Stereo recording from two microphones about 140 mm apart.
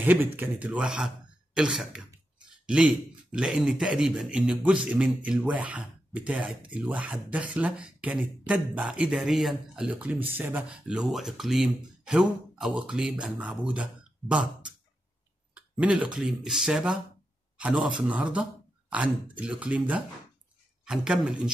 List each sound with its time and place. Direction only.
0.0 s a man's voice: 15° right (ahead or behind)